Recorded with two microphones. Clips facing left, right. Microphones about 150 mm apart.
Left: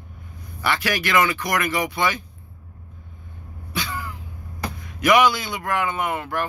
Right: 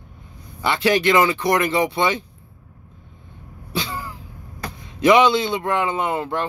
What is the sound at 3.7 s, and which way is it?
Cough, 25° right (ahead or behind).